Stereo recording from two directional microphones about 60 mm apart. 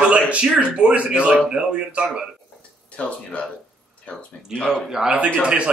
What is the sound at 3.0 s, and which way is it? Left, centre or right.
Speech, left.